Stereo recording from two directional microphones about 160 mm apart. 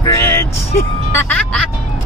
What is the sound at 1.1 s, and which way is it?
Speech, 10° left (ahead or behind).